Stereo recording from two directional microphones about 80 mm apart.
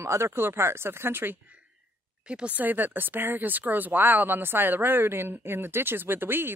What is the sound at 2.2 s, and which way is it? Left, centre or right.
Speech, centre.